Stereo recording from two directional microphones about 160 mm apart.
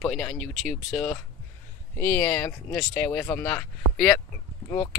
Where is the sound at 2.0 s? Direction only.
15° left (ahead or behind).